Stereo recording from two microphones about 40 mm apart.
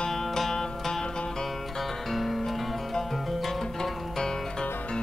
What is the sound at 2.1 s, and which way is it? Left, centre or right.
Music, centre.